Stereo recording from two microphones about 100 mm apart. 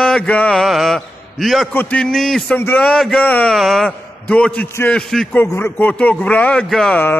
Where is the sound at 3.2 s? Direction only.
15° left (ahead or behind).